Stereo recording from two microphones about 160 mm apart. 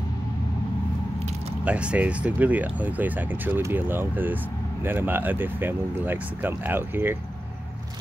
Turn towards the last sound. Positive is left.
turn(degrees=-15)  # may be behind; listen again after turning